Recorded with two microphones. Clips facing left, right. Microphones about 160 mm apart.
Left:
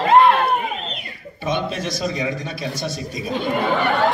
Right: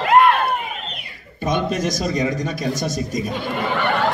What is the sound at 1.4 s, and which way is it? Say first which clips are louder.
A man's voice: right 3 dB; 45° right (ahead or behind).